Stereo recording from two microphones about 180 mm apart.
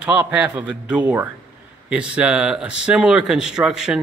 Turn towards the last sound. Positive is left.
turn(degrees=-5)  # may be behind; listen again after turning